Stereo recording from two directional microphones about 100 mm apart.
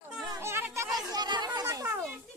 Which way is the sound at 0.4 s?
25° right (ahead or behind).